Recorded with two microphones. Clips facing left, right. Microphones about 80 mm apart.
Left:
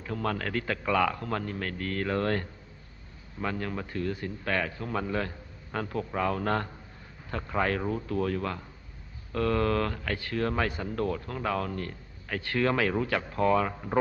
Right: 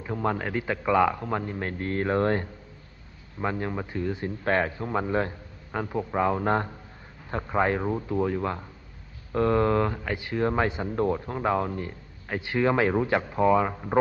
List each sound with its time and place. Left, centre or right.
0.0 s speech: right
5.7 s speech: centre